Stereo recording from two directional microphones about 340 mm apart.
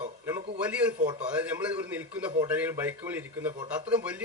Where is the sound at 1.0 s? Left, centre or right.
Centre.